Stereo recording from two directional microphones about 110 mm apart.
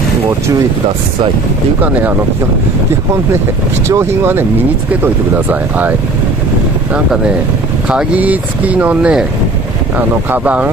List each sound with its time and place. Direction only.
1.8 s speech: 15° right (ahead or behind)
3.9 s speech: 25° right (ahead or behind)